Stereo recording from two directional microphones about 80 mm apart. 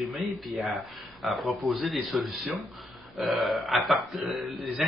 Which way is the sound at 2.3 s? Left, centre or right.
Right.